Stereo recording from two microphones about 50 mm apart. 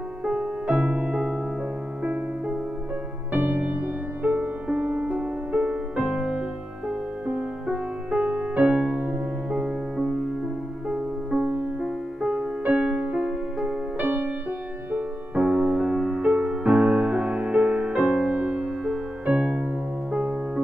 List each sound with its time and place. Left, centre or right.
0.2 s music: centre
3.3 s music: right
4.6 s music: right
8.2 s music: right
10.9 s music: centre
12.6 s music: right
13.9 s music: right
19.5 s keyboard: centre